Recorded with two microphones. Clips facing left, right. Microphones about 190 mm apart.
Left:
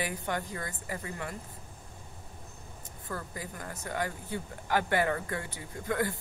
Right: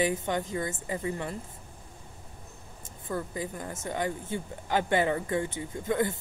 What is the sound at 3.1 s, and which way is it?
Speech, 20° right (ahead or behind).